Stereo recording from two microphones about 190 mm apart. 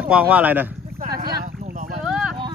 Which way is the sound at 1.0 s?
55° right (ahead or behind).